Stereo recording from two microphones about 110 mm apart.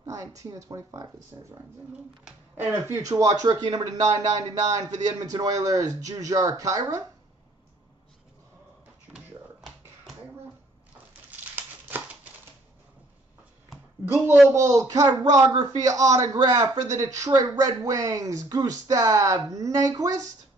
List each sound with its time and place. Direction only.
0.0 s a man's voice: 30° right (ahead or behind)
2.7 s a man's voice: 25° right (ahead or behind)
9.1 s a sound: centre (ahead or behind)
11.2 s crumpling: 15° right (ahead or behind)
13.7 s a sound: centre (ahead or behind)
14.5 s a man's voice: 25° right (ahead or behind)